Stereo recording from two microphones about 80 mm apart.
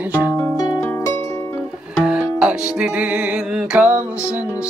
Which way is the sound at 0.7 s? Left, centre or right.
Left.